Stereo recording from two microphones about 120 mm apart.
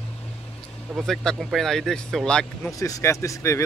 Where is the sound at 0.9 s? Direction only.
Centre (ahead or behind).